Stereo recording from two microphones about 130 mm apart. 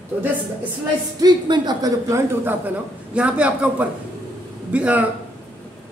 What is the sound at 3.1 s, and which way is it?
A man's voice, 10° right (ahead or behind).